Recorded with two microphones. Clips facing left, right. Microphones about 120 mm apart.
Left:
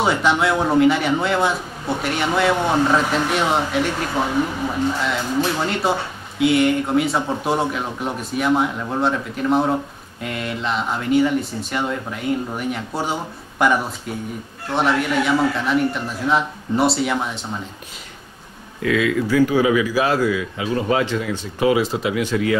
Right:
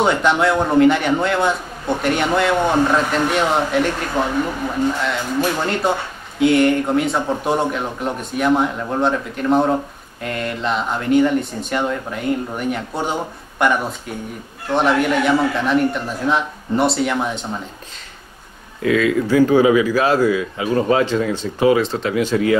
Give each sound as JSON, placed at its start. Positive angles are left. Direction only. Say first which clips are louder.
{"t": 0.0, "sound": "a man's voice", "louder": "right 2 dB", "side_deg": 5}
{"t": 18.8, "sound": "speech", "louder": "right 3 dB", "side_deg": -30}
{"t": 19.2, "sound": "a man's voice", "louder": "right 4 dB", "side_deg": -40}
{"t": 21.7, "sound": "speech", "louder": "right 1 dB", "side_deg": 10}
{"t": 22.3, "sound": "a man's voice", "louder": "right 4 dB", "side_deg": -35}